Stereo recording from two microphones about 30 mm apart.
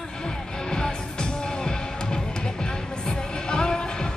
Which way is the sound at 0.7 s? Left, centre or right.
Left.